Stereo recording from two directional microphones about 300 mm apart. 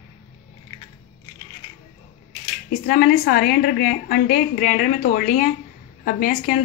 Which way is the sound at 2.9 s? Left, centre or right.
Left.